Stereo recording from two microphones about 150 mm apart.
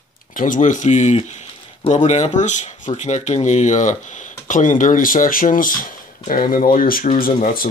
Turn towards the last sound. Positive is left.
turn(degrees=75)  # may be behind; listen again after turning